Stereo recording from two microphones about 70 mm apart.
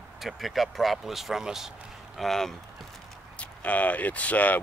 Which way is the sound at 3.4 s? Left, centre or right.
Left.